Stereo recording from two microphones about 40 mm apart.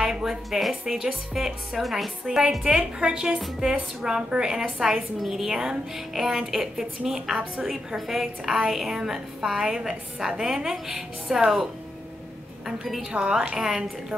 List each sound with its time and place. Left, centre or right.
0.0 s a woman's voice: centre
2.2 s a woman's voice: centre
12.6 s a woman's voice: centre
13.3 s a woman's voice: centre